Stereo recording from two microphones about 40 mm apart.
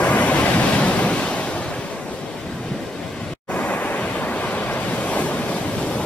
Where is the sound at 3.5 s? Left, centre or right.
Left.